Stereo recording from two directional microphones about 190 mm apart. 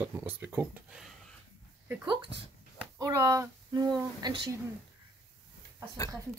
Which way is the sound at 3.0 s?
15° right (ahead or behind).